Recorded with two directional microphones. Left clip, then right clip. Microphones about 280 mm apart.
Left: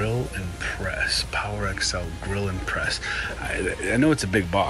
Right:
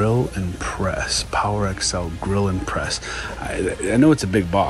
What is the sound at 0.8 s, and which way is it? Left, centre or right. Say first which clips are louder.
Speech: right 2 dB; centre.